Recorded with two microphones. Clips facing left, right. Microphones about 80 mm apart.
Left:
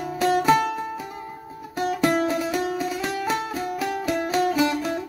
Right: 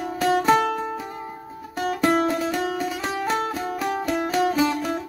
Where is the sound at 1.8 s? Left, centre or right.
Centre.